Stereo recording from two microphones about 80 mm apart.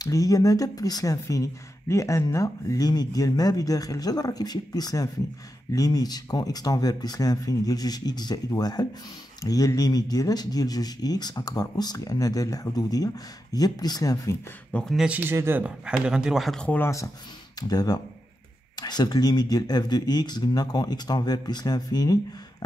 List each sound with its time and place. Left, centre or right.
0.0 s speech: left
9.4 s speech: left
14.7 s speech: centre
15.0 s a man's voice: centre
15.2 s speech: right
15.6 s a man's voice: centre
16.5 s speech: centre
17.6 s speech: left